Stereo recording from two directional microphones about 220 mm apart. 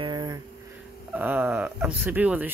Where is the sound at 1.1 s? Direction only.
10° right (ahead or behind).